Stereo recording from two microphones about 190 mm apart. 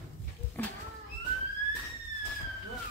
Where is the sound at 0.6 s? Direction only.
10° left (ahead or behind).